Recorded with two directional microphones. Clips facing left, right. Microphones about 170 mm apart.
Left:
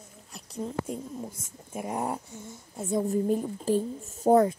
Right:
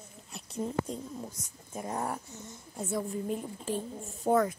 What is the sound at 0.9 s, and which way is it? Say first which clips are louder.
Speech: left 3 dB; 10° left (ahead or behind).